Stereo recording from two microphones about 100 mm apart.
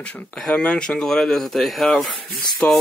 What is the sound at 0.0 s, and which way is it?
Speech, 10° left (ahead or behind).